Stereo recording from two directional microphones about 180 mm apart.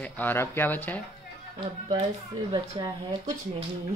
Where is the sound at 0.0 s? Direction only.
10° left (ahead or behind).